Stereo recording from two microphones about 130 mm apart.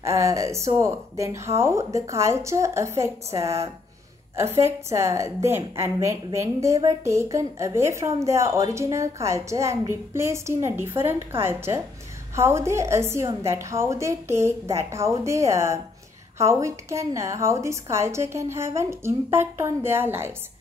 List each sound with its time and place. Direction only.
0.0 s a woman's voice: 25° right (ahead or behind)